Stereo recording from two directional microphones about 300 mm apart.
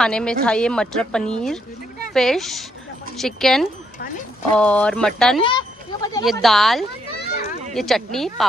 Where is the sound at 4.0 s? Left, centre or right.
Left.